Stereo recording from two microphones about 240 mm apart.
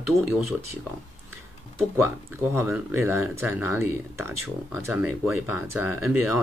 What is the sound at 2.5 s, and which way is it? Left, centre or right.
Speech, centre.